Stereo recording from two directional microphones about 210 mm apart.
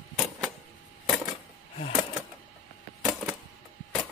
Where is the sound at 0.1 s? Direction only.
5° right (ahead or behind).